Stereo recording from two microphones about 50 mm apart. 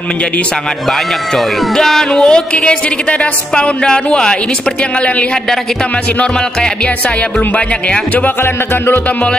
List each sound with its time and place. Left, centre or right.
1.3 s a woman's voice: centre
7.5 s a woman's voice: left
8.4 s music: left